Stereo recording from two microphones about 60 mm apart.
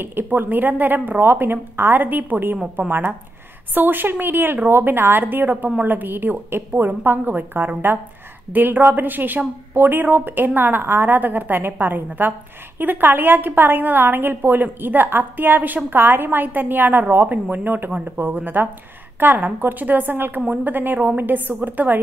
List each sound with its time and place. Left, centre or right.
0.0 s a woman's voice: right